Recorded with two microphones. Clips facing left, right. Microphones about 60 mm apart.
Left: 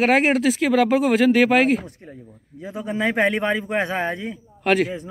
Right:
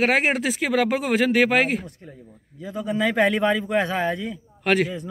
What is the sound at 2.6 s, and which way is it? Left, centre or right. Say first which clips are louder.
Speech: even; left.